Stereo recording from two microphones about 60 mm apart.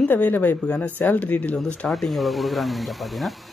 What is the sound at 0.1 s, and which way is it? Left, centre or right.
Speech, left.